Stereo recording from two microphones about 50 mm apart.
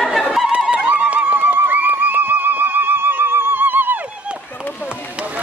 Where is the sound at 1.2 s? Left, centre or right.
Right.